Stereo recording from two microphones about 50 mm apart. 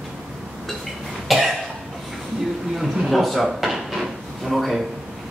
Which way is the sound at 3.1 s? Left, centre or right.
Centre.